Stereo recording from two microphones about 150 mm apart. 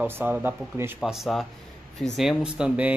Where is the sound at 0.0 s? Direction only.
10° right (ahead or behind).